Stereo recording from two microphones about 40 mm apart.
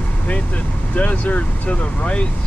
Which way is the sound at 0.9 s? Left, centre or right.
Left.